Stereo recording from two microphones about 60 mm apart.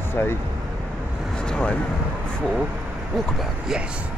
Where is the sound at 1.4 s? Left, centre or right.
Centre.